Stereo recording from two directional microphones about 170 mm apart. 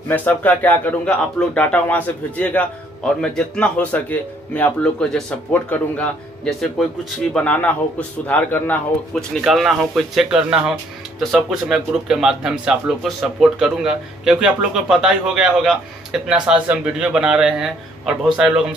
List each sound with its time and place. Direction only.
0.1 s a man's voice: 10° left (ahead or behind)